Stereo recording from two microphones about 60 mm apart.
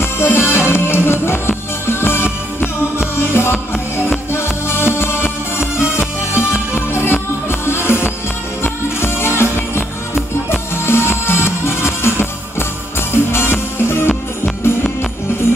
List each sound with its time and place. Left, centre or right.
0.0 s music: left